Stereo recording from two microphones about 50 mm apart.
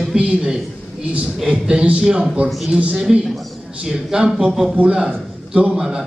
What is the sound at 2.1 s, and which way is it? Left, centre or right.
Speech, centre.